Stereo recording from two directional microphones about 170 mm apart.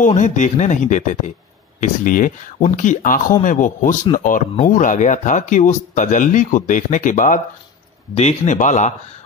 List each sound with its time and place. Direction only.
0.0 s speech: 45° left (ahead or behind)